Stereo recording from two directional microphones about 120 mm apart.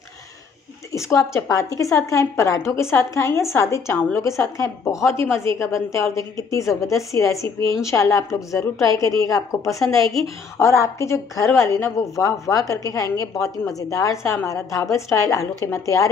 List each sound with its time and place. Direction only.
0.9 s a woman's voice: 25° left (ahead or behind)